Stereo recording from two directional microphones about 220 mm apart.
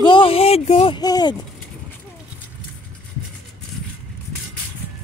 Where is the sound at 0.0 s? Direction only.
25° left (ahead or behind).